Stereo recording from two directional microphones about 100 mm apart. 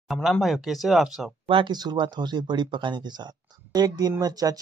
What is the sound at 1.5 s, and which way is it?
A man's voice, 50° right (ahead or behind).